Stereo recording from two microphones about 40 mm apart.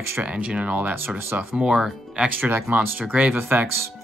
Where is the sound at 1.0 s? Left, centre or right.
Right.